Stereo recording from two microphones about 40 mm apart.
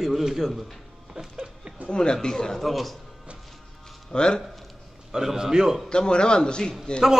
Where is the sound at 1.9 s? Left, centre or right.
Left.